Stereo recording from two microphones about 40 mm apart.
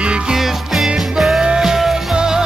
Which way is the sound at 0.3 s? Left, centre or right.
Centre.